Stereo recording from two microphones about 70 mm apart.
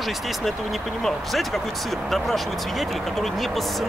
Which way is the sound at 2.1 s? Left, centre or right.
Centre.